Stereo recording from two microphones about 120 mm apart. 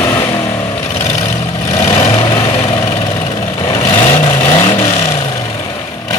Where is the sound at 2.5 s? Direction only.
50° left (ahead or behind).